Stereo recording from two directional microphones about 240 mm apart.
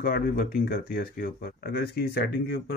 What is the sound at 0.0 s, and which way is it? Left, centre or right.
Speech, left.